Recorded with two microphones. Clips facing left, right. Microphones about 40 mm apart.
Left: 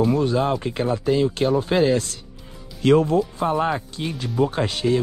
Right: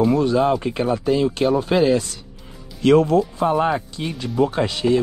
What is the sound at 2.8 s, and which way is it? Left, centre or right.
Speech, right.